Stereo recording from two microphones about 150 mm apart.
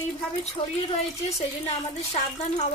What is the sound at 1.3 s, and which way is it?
A woman's voice, 45° left (ahead or behind).